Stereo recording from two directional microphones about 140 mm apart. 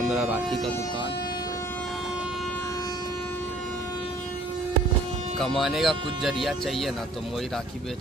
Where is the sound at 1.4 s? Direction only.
25° left (ahead or behind).